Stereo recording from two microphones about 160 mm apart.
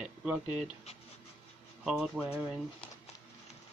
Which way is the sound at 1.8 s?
5° right (ahead or behind).